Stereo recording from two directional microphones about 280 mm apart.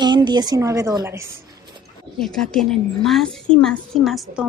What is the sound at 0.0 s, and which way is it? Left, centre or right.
A woman's voice, centre.